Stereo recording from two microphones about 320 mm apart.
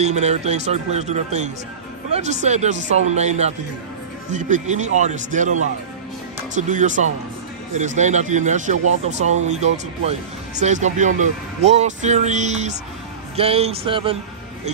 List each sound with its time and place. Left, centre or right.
0.0 s speech: right